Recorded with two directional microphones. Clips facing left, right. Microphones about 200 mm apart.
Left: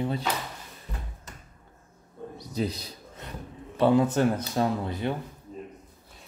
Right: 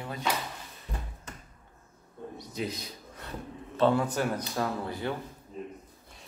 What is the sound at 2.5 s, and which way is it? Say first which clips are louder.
Speech: left 5 dB; 35° left (ahead or behind).